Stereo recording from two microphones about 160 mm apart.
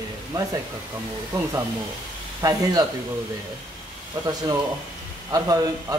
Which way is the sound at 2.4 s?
25° right (ahead or behind).